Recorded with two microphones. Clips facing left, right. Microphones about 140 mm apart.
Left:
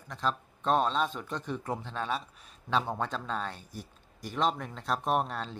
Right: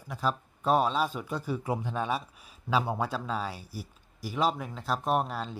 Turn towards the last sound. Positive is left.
turn(degrees=-5)  # may be behind; listen again after turning